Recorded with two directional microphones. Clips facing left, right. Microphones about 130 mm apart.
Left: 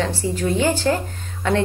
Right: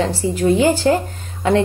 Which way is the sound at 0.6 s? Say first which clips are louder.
Right 3 dB; 15° right (ahead or behind).